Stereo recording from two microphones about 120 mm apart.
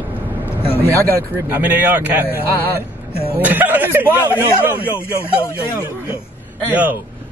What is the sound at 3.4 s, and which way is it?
A man's voice, 15° right (ahead or behind).